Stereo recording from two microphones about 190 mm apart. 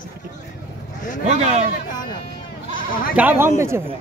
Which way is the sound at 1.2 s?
35° right (ahead or behind).